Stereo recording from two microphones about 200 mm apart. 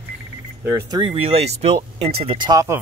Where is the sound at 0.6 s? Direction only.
15° right (ahead or behind).